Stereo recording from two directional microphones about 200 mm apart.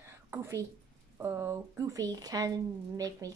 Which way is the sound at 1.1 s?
15° right (ahead or behind).